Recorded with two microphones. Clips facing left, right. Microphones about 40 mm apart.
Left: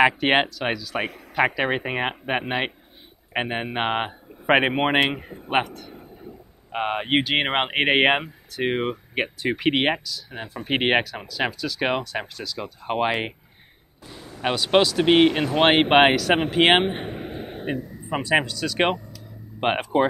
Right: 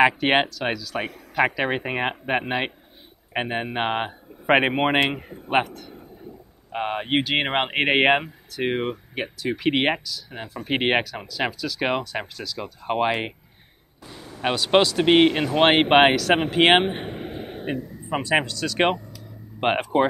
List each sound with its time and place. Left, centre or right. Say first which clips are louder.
0.0 s a man's voice: even; centre
6.7 s a man's voice: left 1 dB; centre
7.2 s speech: even; centre
9.1 s speech: left 2 dB; left
9.7 s speech: even; centre
17.3 s a sound: even; left
18.3 s speech: left 1 dB; centre